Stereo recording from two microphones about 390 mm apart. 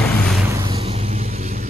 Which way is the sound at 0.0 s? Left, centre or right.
Centre.